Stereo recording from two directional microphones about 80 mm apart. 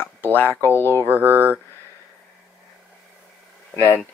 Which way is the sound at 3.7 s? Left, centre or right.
Left.